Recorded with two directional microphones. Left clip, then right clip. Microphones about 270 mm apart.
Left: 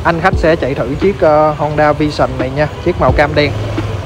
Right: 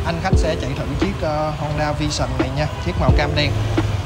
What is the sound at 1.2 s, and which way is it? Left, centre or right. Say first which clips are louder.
Speech: left 14 dB; centre.